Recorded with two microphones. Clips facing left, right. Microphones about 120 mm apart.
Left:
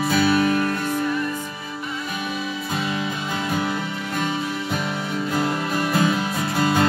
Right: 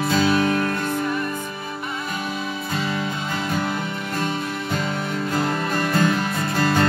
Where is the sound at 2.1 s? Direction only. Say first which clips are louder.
Left 1 dB; 45° right (ahead or behind).